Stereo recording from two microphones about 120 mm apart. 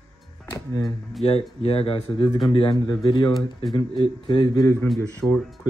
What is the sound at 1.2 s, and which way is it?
Speech, 55° left (ahead or behind).